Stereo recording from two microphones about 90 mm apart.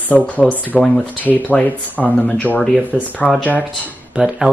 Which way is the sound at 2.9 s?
10° right (ahead or behind).